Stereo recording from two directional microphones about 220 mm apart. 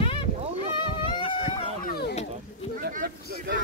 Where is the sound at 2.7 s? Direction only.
40° right (ahead or behind).